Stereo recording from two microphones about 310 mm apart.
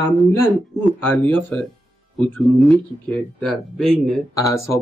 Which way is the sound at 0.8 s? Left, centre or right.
Centre.